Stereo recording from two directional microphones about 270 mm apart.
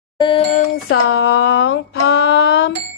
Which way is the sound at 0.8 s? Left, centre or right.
Left.